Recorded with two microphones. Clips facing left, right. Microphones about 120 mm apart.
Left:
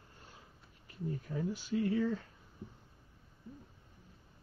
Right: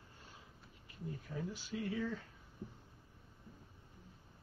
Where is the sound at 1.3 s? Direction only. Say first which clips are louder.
Left 6 dB; 50° left (ahead or behind).